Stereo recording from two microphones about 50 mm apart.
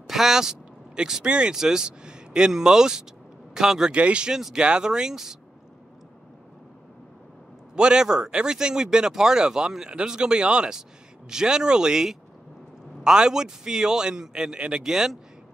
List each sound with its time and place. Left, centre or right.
0.0 s speech: centre
3.9 s speech: right
4.4 s speech: centre
7.7 s speech: centre